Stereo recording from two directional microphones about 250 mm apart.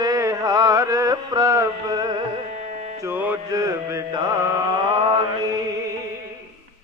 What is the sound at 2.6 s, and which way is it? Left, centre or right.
Carnatic music, right.